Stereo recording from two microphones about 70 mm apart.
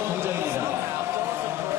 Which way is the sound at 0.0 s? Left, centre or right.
Right.